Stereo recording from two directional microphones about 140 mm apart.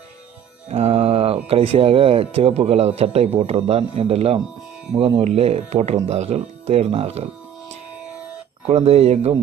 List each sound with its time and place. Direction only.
0.7 s speech: 50° right (ahead or behind)
8.6 s speech: 50° right (ahead or behind)